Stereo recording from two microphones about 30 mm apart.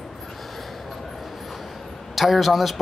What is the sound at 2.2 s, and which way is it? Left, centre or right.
Speech, centre.